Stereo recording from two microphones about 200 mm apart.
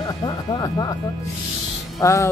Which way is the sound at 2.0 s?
15° left (ahead or behind).